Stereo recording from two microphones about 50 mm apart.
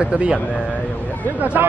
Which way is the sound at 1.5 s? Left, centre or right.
Right.